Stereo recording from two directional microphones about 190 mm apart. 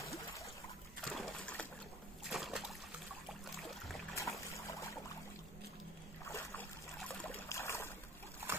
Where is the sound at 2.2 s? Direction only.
Centre (ahead or behind).